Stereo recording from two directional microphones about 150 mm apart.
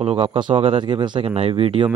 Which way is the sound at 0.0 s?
40° right (ahead or behind).